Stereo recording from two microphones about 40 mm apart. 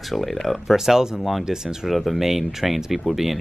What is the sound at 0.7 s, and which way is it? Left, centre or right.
Speech, centre.